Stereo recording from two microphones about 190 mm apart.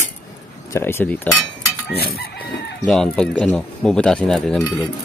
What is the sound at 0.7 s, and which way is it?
Speech, 10° left (ahead or behind).